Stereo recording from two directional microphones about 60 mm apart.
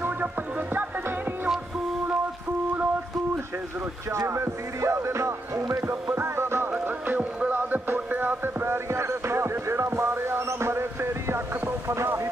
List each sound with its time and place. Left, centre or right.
4.1 s music: right
6.1 s music: right
6.7 s music: right